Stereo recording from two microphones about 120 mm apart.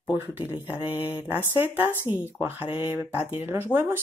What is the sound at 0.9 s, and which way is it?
Speech, 15° right (ahead or behind).